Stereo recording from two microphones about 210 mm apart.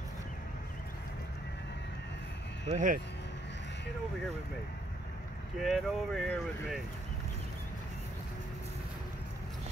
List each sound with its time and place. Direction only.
2.7 s speech: 40° right (ahead or behind)
5.6 s speech: centre (ahead or behind)